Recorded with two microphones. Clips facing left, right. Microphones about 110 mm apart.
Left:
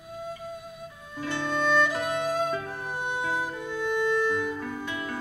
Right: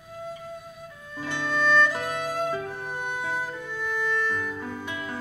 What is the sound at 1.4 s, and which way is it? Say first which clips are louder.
Music: right 2 dB; 15° left (ahead or behind).